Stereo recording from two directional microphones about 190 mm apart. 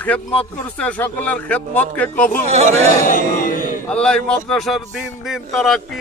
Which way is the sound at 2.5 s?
35° right (ahead or behind).